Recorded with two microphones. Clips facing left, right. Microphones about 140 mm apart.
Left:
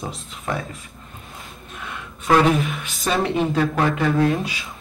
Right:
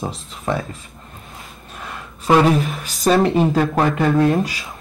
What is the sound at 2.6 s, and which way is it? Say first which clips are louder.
Speech: right 5 dB; 35° right (ahead or behind).